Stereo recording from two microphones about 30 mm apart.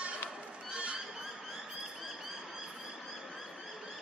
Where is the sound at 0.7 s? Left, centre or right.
Right.